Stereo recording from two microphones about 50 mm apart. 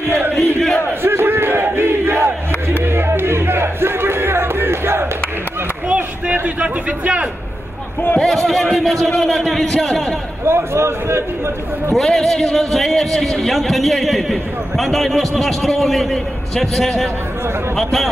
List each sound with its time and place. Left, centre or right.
0.4 s a man's voice: centre
1.0 s battle cry: right
2.8 s music: right
6.3 s a man's voice: right
8.2 s a man's voice: centre
10.4 s a man's voice: right
11.9 s a man's voice: centre